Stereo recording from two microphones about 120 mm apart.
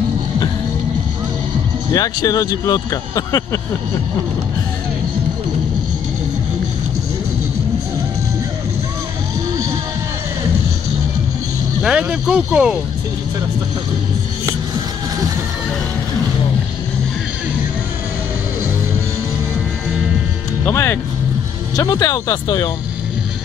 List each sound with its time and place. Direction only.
2.0 s speech: 30° left (ahead or behind)
11.8 s speech: 5° right (ahead or behind)
20.6 s speech: 20° left (ahead or behind)